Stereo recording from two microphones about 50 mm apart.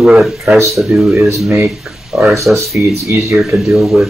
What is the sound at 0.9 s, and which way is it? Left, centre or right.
Speech, right.